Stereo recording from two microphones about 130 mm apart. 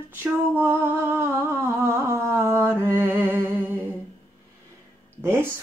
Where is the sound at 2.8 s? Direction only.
15° right (ahead or behind).